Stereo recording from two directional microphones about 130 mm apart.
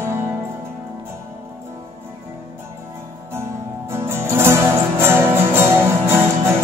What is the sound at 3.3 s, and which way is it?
Music, 20° right (ahead or behind).